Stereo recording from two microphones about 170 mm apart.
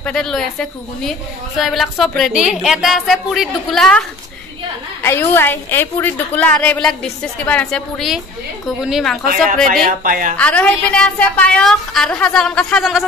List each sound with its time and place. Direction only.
0.0 s a woman's voice: 5° left (ahead or behind)
5.0 s a woman's voice: 15° left (ahead or behind)
9.8 s a woman's voice: 55° right (ahead or behind)
10.3 s a woman's voice: 5° left (ahead or behind)